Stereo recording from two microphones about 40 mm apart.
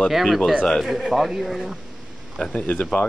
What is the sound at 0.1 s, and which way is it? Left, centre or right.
Speech, centre.